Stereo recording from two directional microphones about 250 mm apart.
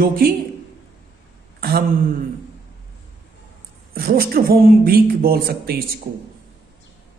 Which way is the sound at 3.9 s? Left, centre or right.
Right.